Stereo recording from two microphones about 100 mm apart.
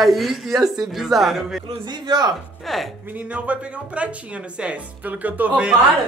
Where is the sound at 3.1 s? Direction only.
15° right (ahead or behind).